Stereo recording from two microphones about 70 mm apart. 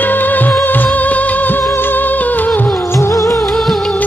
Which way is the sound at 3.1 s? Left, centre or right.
Left.